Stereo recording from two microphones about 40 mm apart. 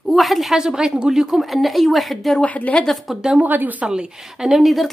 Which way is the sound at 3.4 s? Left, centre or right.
Right.